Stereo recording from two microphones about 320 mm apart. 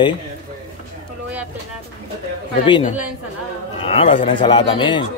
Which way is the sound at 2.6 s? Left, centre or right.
Centre.